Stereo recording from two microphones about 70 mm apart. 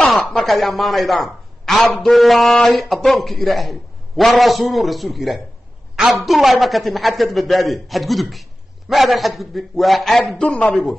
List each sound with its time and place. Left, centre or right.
0.2 s a man's voice: centre
10.5 s speech: centre